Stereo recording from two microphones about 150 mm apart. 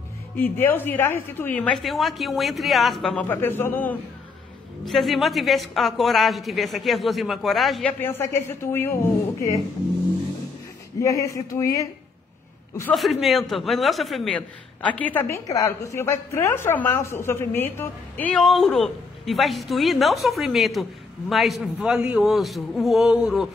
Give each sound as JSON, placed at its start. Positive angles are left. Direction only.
{"t": 0.4, "sound": "a woman's voice", "side_deg": 15}
{"t": 4.8, "sound": "a woman's voice", "side_deg": 0}
{"t": 8.0, "sound": "a woman's voice", "side_deg": 15}
{"t": 11.0, "sound": "speech", "side_deg": 20}
{"t": 13.2, "sound": "a woman's voice", "side_deg": 0}